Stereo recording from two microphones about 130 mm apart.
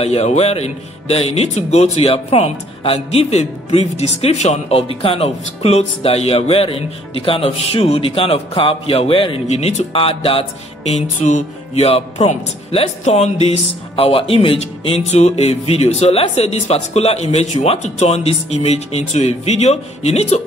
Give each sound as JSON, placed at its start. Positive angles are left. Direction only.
{"t": 0.0, "sound": "speech", "side_deg": 55}
{"t": 10.9, "sound": "speech", "side_deg": 60}